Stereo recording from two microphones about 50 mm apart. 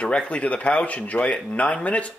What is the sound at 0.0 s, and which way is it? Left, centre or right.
Speech, centre.